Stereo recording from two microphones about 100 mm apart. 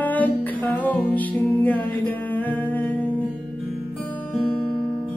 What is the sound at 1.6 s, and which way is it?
Humming, 15° left (ahead or behind).